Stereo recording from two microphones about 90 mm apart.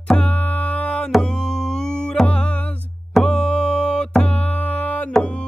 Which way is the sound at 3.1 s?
5° left (ahead or behind).